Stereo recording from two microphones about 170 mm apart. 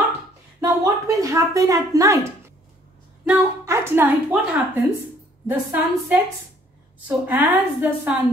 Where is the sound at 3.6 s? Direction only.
15° right (ahead or behind).